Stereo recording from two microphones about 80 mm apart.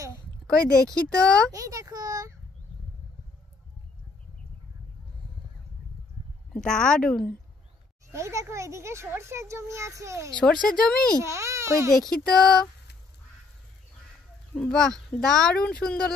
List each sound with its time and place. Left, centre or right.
0.8 s speech: centre
1.5 s a sound: right
6.5 s speech: centre
8.1 s a child's voice: right
10.4 s speech: centre
11.1 s a child's voice: right
11.9 s speech: centre
14.5 s speech: centre